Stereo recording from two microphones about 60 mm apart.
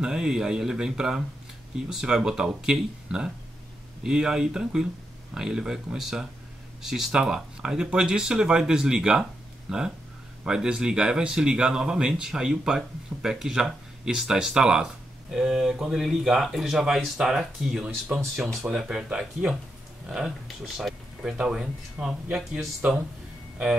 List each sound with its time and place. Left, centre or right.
0.0 s speech: centre
19.0 s speech: centre
20.4 s speech: centre
21.2 s speech: centre